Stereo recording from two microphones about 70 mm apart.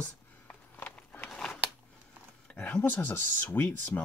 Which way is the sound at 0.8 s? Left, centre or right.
Left.